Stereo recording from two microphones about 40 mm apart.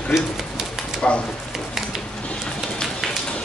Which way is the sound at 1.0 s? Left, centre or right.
Left.